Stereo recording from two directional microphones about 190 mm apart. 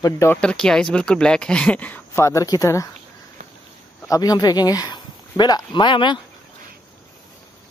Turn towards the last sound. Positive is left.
turn(degrees=25)  # may be behind; listen again after turning